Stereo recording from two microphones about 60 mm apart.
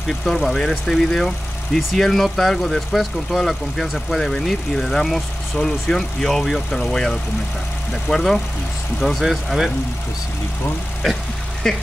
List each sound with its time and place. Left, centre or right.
0.2 s speech: centre
11.6 s speech: centre